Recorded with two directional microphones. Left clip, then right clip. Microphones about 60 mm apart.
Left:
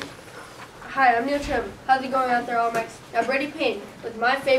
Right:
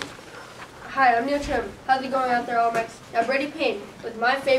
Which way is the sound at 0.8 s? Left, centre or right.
Centre.